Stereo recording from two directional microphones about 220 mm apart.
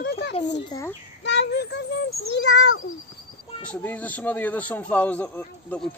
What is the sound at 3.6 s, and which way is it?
Speech, 5° left (ahead or behind).